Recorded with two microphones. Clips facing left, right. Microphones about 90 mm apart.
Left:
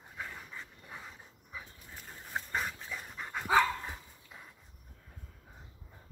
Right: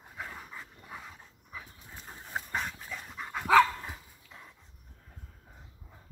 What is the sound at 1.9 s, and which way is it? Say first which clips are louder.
Dog: right 1 dB; 15° right (ahead or behind).